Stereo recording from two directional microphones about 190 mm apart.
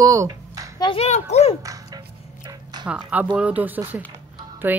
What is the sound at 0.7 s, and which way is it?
Speech, 25° left (ahead or behind).